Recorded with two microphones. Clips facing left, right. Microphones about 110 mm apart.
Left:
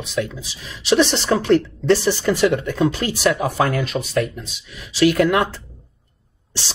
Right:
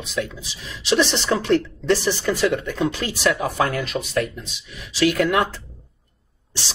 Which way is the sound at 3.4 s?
30° left (ahead or behind).